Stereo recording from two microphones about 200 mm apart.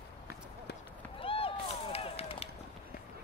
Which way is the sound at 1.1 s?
25° left (ahead or behind).